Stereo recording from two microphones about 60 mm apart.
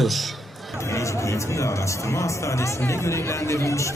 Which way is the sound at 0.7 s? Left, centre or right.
Left.